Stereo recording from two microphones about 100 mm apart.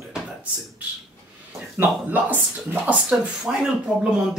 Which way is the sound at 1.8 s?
20° right (ahead or behind).